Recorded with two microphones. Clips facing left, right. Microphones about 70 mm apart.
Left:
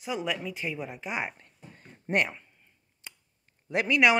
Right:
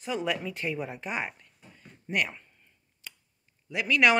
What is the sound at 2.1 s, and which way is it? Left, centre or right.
Speech, left.